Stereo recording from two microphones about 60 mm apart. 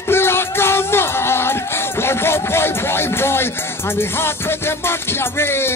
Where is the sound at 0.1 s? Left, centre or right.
Left.